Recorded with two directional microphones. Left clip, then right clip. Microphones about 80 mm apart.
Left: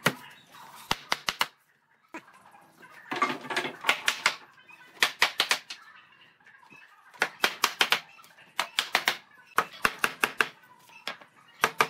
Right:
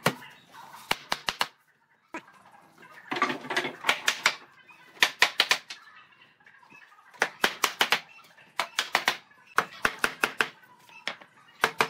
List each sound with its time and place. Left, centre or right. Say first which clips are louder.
0.0 s a sound: even; centre
2.1 s turkey: right 3 dB; centre
3.1 s typewriter: even; centre
7.4 s clapping: left 1 dB; centre
8.5 s a sound: even; centre
9.8 s chopping: even; centre